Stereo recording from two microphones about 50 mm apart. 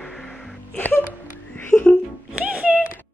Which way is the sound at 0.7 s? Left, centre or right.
Left.